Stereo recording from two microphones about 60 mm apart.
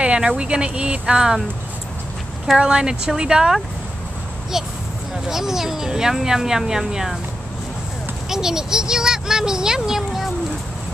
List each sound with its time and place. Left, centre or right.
0.0 s a sound: centre
0.4 s a child's voice: centre
2.6 s a child's voice: centre
5.3 s a child's voice: centre
8.3 s a child's voice: centre